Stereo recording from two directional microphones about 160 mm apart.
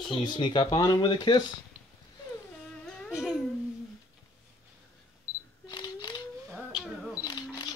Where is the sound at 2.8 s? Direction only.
Centre (ahead or behind).